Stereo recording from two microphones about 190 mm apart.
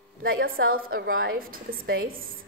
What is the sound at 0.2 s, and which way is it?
A woman's voice, 50° right (ahead or behind).